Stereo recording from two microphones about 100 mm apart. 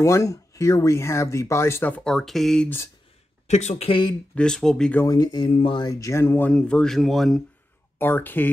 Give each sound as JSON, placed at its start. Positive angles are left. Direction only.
{"t": 0.0, "sound": "speech", "side_deg": 30}
{"t": 2.0, "sound": "speech", "side_deg": 5}
{"t": 3.4, "sound": "speech", "side_deg": 90}
{"t": 4.4, "sound": "speech", "side_deg": 5}
{"t": 5.0, "sound": "speech", "side_deg": 40}
{"t": 5.3, "sound": "speech", "side_deg": 60}
{"t": 5.9, "sound": "speech", "side_deg": 30}
{"t": 6.5, "sound": "speech", "side_deg": 10}
{"t": 8.0, "sound": "speech", "side_deg": 20}